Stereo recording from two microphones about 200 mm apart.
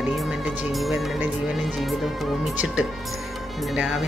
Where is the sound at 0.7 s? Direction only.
Centre (ahead or behind).